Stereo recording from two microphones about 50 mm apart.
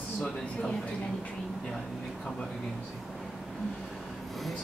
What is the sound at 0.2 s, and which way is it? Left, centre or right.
Speech, centre.